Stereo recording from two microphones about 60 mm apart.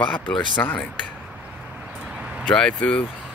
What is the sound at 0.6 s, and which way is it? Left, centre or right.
Speech, left.